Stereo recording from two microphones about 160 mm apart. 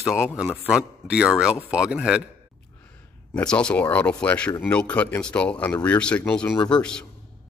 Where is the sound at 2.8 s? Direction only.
10° left (ahead or behind).